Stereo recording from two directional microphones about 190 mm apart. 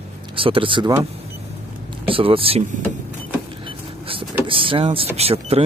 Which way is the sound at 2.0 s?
30° right (ahead or behind).